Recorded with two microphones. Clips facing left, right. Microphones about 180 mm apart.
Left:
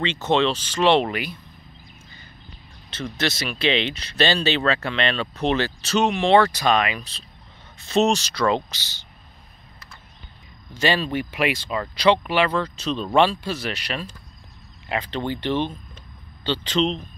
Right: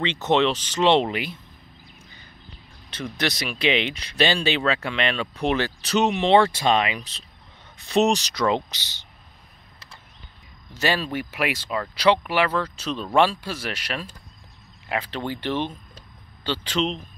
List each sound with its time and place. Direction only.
0.0 s speech: 20° right (ahead or behind)
2.9 s speech: 15° right (ahead or behind)
10.7 s speech: 10° right (ahead or behind)